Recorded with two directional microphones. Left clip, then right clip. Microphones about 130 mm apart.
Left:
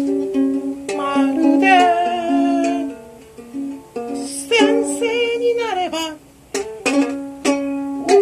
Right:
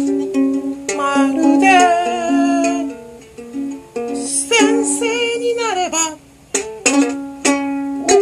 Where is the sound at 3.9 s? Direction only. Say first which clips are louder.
Right 4 dB; 5° right (ahead or behind).